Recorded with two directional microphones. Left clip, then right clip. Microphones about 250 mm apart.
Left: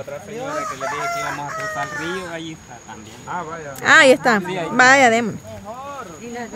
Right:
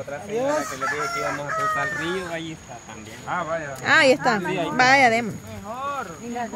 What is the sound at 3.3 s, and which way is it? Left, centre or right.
Speech, right.